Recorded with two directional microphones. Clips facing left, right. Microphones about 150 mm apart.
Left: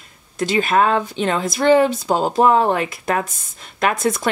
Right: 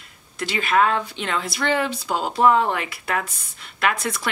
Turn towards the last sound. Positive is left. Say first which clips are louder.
# left 5 dB
turn(degrees=45)  # may be behind; listen again after turning